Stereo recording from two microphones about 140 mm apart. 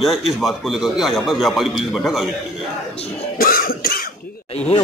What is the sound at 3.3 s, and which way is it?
Cough, 90° left.